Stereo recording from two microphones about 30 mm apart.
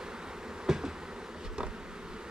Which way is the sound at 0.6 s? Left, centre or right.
Centre.